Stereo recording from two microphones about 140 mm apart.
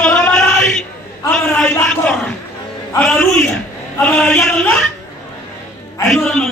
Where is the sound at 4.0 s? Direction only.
10° left (ahead or behind).